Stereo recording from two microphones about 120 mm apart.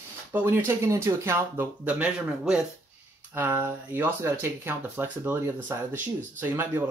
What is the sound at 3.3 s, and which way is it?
Speech, 15° right (ahead or behind).